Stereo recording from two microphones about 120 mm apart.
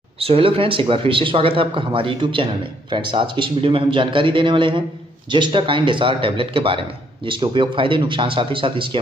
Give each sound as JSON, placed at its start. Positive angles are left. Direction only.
{"t": 0.2, "sound": "speech", "side_deg": -50}